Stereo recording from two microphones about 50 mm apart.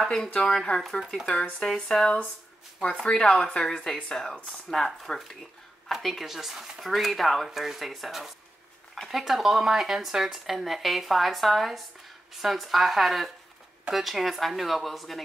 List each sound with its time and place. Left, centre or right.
0.0 s a woman's voice: centre
1.2 s a woman's voice: left; by 15.2 s centre